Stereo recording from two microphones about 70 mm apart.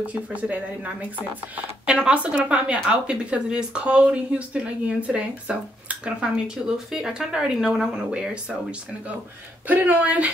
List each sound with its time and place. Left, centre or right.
0.0 s speech: right
9.7 s speech: right